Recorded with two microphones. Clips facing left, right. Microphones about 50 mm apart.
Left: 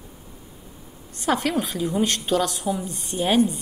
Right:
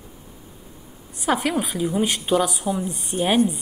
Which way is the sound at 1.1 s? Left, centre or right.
Centre.